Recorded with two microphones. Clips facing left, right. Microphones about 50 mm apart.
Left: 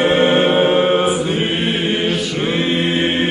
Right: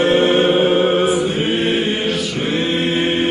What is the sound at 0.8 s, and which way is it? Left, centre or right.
Mantra, left.